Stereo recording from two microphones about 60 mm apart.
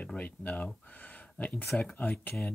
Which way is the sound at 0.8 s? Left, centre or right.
Left.